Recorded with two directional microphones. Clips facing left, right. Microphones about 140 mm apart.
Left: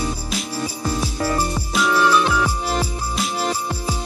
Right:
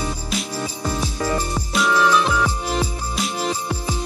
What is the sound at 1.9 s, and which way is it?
Music, 5° left (ahead or behind).